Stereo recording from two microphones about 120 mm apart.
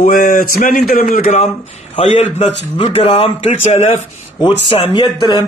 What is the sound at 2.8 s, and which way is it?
Speech, 55° left (ahead or behind).